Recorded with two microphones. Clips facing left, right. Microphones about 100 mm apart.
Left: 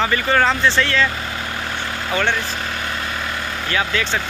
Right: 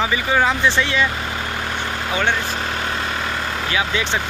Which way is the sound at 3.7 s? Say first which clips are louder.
Left 1 dB; 15° right (ahead or behind).